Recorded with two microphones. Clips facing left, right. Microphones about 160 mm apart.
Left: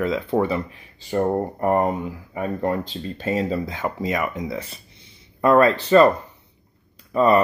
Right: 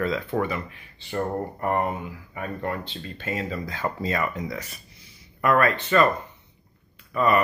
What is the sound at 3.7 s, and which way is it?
Speech, 20° left (ahead or behind).